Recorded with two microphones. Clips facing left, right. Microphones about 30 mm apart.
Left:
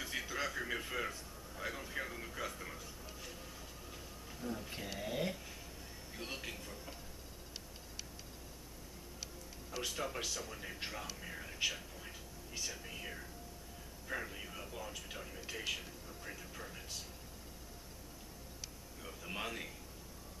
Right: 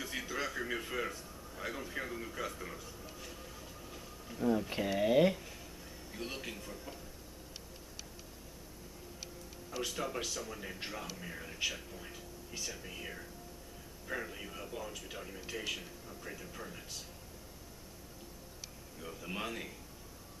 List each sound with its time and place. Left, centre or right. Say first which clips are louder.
0.0 s a sound: right 1 dB; centre
4.4 s speech: right 11 dB; centre
6.1 s speech: right 2 dB; centre
9.7 s speech: right 2 dB; centre
18.9 s speech: right 2 dB; centre